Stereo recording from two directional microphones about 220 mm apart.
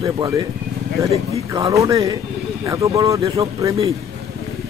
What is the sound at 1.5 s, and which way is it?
A man's voice, 15° right (ahead or behind).